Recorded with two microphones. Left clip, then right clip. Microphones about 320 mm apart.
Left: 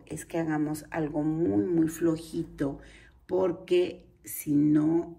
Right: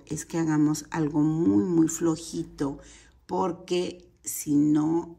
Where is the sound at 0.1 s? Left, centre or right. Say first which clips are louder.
Right 3 dB; centre.